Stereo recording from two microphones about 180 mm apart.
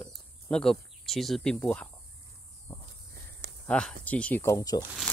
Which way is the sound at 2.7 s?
15° left (ahead or behind).